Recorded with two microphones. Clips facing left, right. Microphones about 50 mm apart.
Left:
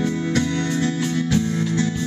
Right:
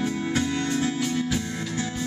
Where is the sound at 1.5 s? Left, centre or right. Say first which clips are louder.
Left 8 dB; centre.